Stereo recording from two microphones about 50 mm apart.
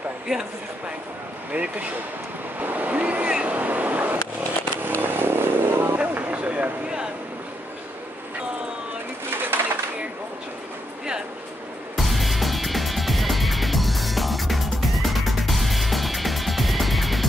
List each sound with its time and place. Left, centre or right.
1.5 s speech: right
2.6 s waves: right
3.4 s vehicle: right
5.0 s vehicle: right
5.9 s a sound: right
9.5 s a sound: right
12.0 s music: centre